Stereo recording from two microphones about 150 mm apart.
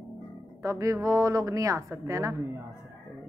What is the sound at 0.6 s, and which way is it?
A woman's voice, 20° right (ahead or behind).